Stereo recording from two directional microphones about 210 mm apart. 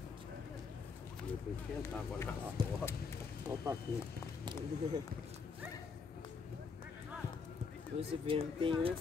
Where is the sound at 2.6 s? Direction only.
20° right (ahead or behind).